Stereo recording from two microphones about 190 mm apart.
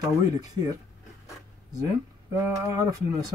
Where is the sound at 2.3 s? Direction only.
15° right (ahead or behind).